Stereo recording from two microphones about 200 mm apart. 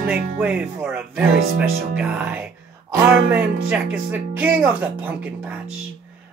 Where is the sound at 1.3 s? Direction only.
50° right (ahead or behind).